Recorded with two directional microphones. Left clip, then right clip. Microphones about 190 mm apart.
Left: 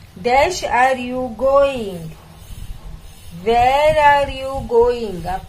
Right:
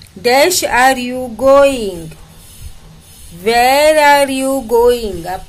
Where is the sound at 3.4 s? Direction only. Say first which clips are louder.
Right 4 dB; 50° right (ahead or behind).